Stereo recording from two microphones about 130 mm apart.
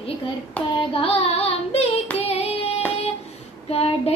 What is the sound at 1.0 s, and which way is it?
Child singing, 50° left (ahead or behind).